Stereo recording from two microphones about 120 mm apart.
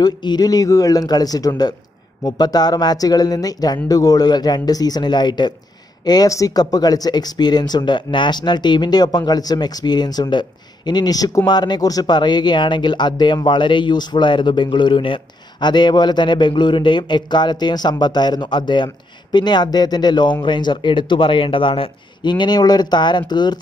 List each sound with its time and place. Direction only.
0.0 s speech: 35° left (ahead or behind)